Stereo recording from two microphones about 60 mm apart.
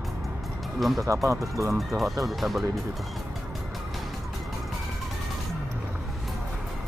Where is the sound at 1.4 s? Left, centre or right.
Right.